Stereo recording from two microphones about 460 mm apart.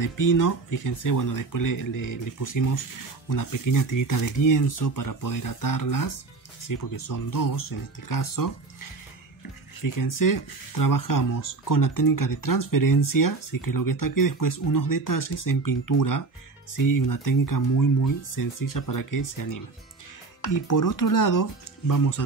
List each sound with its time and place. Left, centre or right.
0.0 s speech: left